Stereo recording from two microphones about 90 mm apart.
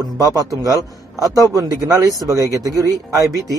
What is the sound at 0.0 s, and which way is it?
A man's voice, 40° right (ahead or behind).